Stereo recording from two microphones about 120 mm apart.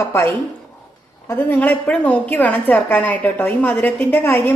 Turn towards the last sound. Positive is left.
turn(degrees=15)  # may be behind; listen again after turning